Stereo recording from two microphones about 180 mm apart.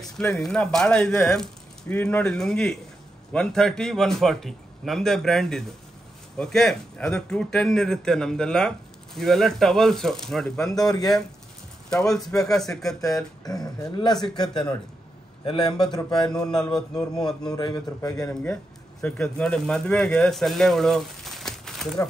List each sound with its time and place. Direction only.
0.0 s a man's voice: centre (ahead or behind)
10.8 s a man's voice: 20° left (ahead or behind)
11.9 s a man's voice: 5° left (ahead or behind)
13.4 s a man's voice: 20° left (ahead or behind)
15.8 s a man's voice: 25° left (ahead or behind)
18.3 s speech: 5° left (ahead or behind)